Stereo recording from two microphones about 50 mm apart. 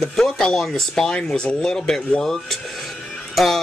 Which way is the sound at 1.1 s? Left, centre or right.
Left.